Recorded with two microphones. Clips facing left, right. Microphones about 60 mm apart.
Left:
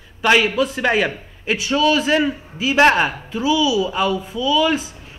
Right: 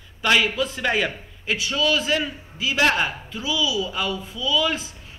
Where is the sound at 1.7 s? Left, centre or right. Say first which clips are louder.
Left 6 dB; left.